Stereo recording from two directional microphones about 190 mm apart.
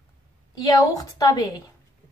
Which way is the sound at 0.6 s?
20° left (ahead or behind).